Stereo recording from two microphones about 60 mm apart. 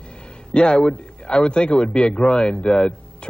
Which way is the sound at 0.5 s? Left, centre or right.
Centre.